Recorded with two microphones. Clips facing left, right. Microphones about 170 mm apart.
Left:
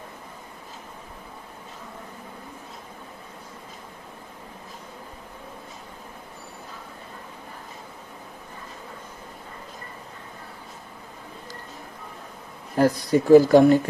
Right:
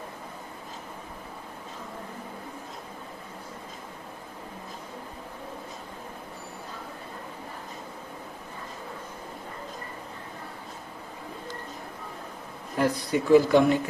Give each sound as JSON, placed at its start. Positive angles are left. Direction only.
{"t": 12.7, "sound": "speech", "side_deg": 40}